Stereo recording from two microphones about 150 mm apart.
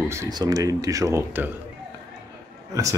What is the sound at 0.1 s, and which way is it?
Speech, 20° right (ahead or behind).